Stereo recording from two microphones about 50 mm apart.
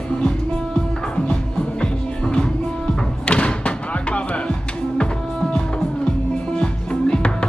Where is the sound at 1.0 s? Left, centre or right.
Centre.